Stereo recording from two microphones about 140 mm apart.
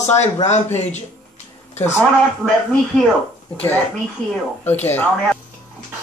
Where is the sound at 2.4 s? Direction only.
5° right (ahead or behind).